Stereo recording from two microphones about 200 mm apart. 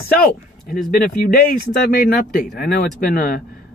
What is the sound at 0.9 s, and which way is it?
Speech, 45° left (ahead or behind).